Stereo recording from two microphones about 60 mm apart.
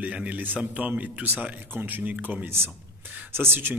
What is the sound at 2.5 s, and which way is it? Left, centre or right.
A man's voice, right.